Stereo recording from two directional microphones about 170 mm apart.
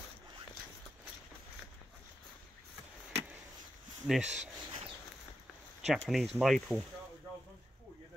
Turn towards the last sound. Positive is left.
turn(degrees=0)  # may be behind; listen again after turning